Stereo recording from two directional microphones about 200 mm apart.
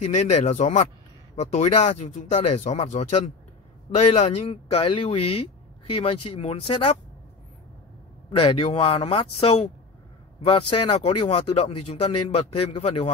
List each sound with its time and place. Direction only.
0.0 s speech: 35° left (ahead or behind)
8.4 s speech: 30° left (ahead or behind)